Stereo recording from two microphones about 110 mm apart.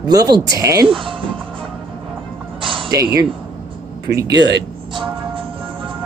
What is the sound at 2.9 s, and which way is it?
Speech, 30° right (ahead or behind).